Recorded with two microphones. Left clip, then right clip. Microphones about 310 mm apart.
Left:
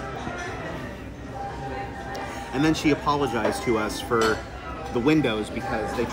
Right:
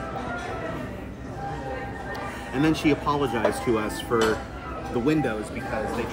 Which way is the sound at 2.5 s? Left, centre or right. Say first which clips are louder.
Even; centre.